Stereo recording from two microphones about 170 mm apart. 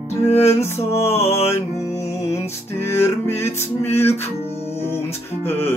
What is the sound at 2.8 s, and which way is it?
Music, 15° left (ahead or behind).